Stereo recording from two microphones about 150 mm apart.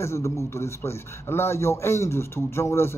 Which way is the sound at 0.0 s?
20° left (ahead or behind).